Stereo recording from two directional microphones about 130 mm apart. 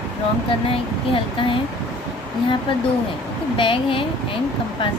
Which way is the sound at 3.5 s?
40° left (ahead or behind).